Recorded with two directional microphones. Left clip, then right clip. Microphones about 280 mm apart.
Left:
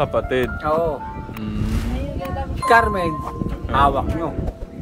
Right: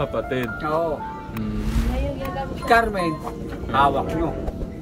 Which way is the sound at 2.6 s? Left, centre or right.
Centre.